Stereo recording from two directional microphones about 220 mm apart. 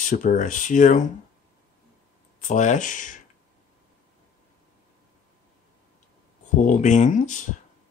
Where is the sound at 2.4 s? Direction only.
35° left (ahead or behind).